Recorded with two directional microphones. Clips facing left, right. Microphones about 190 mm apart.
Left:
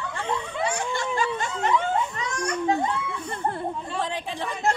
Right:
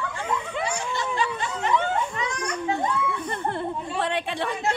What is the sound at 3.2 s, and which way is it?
Chatter, 70° right (ahead or behind).